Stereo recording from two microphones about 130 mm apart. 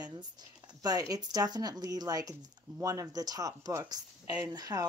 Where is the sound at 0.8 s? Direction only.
30° right (ahead or behind).